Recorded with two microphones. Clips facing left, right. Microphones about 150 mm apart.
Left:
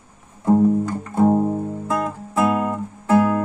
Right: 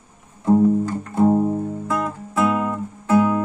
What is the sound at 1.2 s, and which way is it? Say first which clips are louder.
Music: even; 10° left (ahead or behind).